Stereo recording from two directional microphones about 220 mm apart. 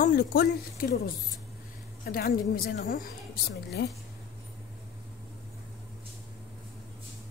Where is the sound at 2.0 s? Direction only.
40° left (ahead or behind).